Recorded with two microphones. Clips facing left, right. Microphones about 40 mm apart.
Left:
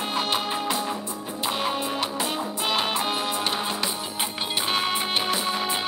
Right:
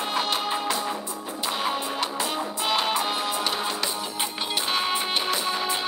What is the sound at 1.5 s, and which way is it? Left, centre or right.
Music, centre.